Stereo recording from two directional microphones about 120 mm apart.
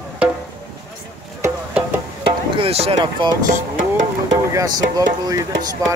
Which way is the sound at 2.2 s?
50° right (ahead or behind).